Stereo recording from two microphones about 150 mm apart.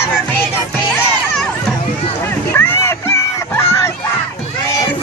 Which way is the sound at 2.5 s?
15° left (ahead or behind).